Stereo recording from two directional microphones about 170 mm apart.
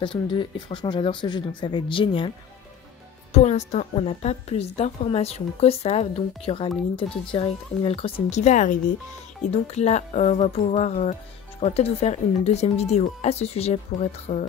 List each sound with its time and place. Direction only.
0.0 s speech: 30° left (ahead or behind)
3.3 s a woman's voice: 40° left (ahead or behind)